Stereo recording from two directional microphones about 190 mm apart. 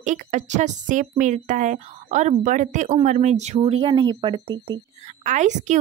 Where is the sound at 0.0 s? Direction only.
40° right (ahead or behind); by 4.8 s 25° right (ahead or behind).